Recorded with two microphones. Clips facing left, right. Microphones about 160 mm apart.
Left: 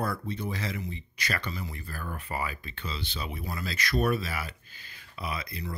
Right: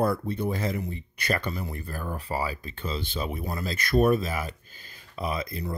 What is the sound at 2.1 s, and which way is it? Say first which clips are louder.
Speech: right 4 dB; 30° right (ahead or behind).